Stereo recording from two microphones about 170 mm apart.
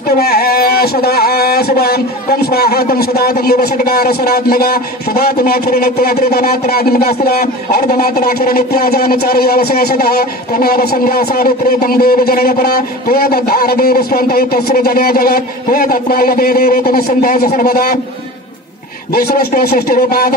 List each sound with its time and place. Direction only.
0.2 s speech: 65° left (ahead or behind)
19.1 s speech: 60° left (ahead or behind)